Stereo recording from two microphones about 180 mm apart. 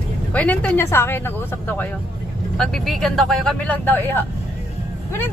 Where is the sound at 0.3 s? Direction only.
10° left (ahead or behind).